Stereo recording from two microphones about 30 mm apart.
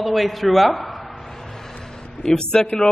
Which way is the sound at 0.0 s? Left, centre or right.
Centre.